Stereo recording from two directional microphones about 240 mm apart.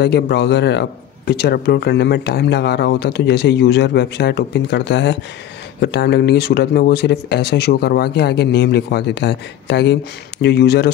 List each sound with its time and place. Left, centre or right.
0.0 s a man's voice: left